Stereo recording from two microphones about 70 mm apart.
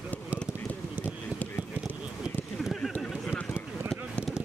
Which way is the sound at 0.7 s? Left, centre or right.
Left.